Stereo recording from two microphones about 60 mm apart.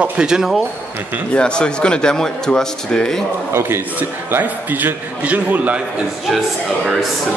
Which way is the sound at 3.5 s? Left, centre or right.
Right.